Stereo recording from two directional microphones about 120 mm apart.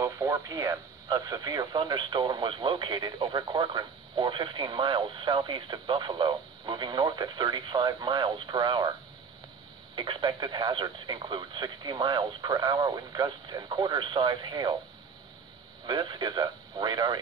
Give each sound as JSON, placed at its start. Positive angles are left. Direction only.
{"t": 0.0, "sound": "speech", "side_deg": -30}
{"t": 9.9, "sound": "speech", "side_deg": -45}
{"t": 15.9, "sound": "speech", "side_deg": -40}